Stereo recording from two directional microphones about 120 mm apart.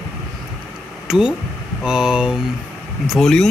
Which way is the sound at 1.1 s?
5° right (ahead or behind).